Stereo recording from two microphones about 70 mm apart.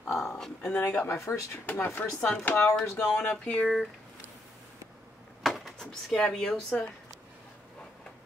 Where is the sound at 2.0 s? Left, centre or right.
Left.